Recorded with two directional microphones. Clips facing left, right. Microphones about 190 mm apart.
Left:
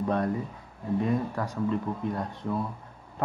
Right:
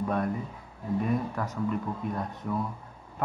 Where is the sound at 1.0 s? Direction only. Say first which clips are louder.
Left 1 dB; 30° left (ahead or behind).